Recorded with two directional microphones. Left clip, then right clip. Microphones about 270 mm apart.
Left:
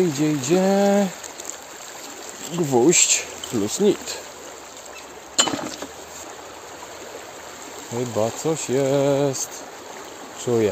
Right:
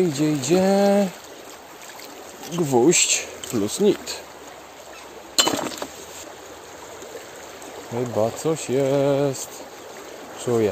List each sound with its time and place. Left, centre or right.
0.1 s speech: centre
2.5 s speech: centre
5.3 s a sound: right
8.2 s speech: centre
10.5 s speech: centre